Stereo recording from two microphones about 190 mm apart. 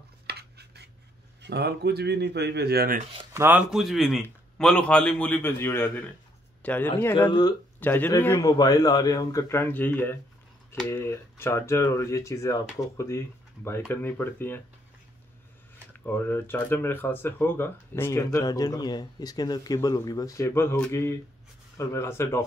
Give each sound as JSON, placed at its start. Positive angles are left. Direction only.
{"t": 0.3, "sound": "cutlery", "side_deg": -60}
{"t": 1.4, "sound": "speech", "side_deg": -60}
{"t": 3.3, "sound": "a man's voice", "side_deg": -10}
{"t": 7.8, "sound": "speech", "side_deg": 10}
{"t": 16.1, "sound": "speech", "side_deg": 10}